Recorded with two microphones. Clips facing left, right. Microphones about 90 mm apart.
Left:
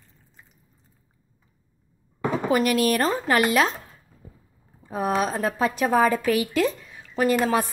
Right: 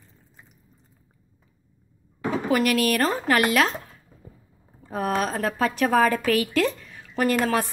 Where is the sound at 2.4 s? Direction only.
25° left (ahead or behind).